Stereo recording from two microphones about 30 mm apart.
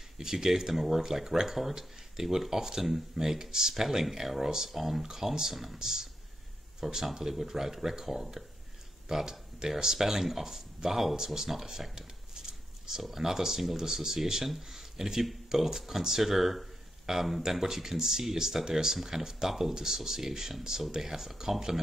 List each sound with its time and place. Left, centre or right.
0.2 s speech: centre
13.1 s speech: centre